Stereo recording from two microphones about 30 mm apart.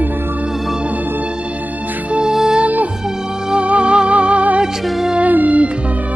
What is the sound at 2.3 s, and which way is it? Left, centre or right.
Music, centre.